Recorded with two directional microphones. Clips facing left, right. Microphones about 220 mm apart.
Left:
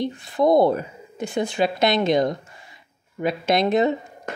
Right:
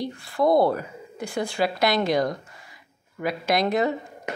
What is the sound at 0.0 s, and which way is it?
Speech, 20° left (ahead or behind).